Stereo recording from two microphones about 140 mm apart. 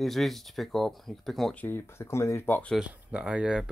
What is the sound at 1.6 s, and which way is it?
Speech, 15° left (ahead or behind).